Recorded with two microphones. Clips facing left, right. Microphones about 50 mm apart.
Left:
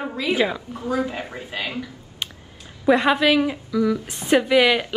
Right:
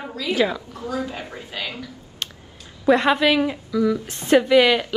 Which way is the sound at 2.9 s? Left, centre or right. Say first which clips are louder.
Even; centre.